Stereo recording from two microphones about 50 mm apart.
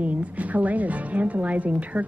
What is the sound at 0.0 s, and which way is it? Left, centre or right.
A woman's voice, right.